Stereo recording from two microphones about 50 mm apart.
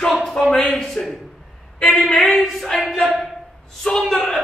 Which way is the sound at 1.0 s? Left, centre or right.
Left.